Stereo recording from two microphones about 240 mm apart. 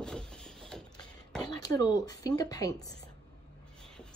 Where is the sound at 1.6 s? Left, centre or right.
Centre.